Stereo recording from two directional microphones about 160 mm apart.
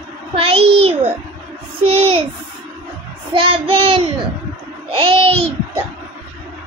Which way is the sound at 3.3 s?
35° right (ahead or behind).